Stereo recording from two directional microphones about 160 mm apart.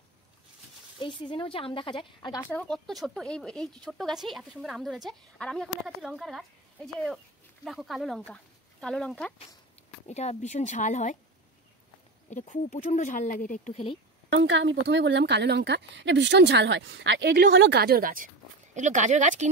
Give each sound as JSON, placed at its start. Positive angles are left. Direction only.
{"t": 0.9, "sound": "speech", "side_deg": 30}
{"t": 2.5, "sound": "speech", "side_deg": 5}
{"t": 10.0, "sound": "speech", "side_deg": 45}
{"t": 12.3, "sound": "speech", "side_deg": 50}
{"t": 14.8, "sound": "speech", "side_deg": -90}
{"t": 18.8, "sound": "speech", "side_deg": -50}